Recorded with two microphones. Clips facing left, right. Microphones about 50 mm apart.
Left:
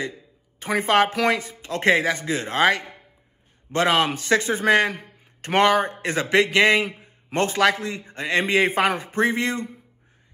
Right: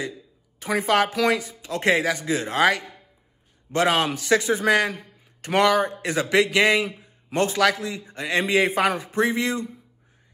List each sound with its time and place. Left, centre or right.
0.0 s a man's voice: left